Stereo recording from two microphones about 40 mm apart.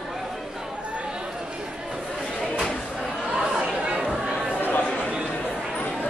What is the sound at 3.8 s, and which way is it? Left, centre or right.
Chatter, right.